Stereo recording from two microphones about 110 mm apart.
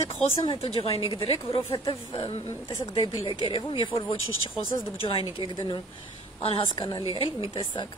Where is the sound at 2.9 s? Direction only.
50° left (ahead or behind).